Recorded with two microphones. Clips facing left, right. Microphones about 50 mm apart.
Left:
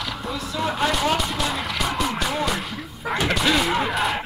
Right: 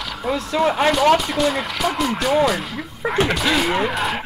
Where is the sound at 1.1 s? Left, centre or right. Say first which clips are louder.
Right 5 dB; centre.